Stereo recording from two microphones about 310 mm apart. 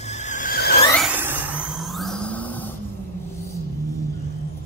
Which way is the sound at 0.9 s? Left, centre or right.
Centre.